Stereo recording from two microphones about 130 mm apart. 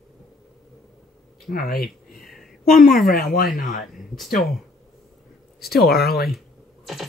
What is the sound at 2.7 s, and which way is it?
A woman's voice, 90° left.